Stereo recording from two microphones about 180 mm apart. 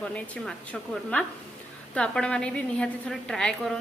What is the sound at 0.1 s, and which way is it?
Speech, 5° left (ahead or behind).